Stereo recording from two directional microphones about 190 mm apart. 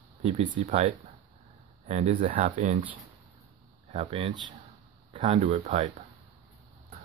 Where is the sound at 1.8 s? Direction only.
35° right (ahead or behind).